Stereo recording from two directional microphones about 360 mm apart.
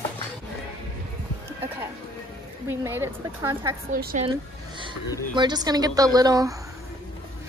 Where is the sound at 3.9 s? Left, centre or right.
Right.